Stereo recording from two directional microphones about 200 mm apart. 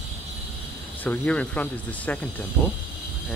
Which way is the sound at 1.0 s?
5° left (ahead or behind).